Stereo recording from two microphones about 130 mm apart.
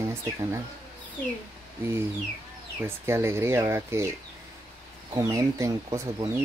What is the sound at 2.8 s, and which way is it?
Speech, 20° right (ahead or behind).